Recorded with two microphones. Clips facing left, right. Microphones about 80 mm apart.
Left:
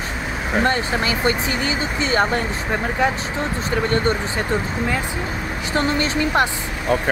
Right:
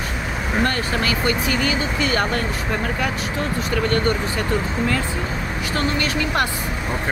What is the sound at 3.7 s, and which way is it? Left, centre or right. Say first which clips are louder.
Speech: left 1 dB; left.